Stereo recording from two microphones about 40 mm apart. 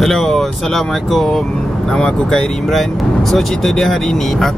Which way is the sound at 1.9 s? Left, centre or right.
Centre.